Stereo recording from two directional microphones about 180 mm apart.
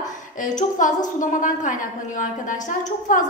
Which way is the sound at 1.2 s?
45° left (ahead or behind).